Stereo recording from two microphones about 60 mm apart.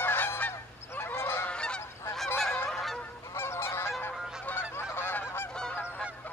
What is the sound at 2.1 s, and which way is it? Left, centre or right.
Goose, centre.